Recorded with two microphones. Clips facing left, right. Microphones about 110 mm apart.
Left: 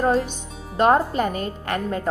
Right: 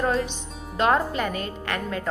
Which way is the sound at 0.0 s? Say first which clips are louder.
Left 4 dB; 35° left (ahead or behind).